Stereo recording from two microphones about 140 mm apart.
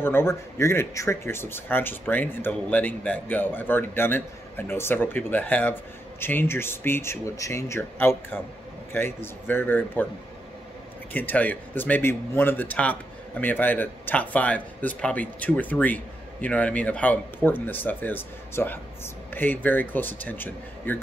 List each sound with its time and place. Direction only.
0.0 s speech: 15° left (ahead or behind)
11.1 s speech: 10° left (ahead or behind)